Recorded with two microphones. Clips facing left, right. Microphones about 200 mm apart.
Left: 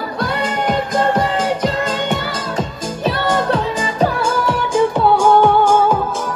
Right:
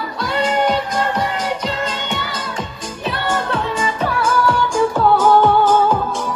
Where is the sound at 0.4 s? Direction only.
50° left (ahead or behind).